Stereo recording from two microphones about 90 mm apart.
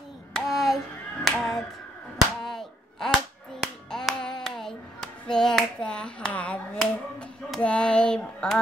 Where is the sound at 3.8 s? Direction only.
5° left (ahead or behind).